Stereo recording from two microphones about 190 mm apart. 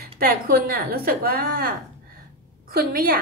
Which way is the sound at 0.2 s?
50° right (ahead or behind).